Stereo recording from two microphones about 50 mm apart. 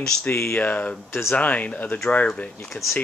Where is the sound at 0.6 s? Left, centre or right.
Left.